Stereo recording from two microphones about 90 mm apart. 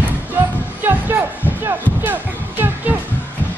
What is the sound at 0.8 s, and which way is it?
Music, 20° right (ahead or behind).